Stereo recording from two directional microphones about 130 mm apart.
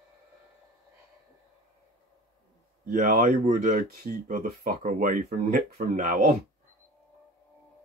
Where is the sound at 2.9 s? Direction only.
90° right.